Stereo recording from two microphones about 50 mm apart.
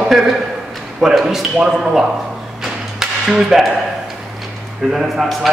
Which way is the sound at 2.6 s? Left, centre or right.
Centre.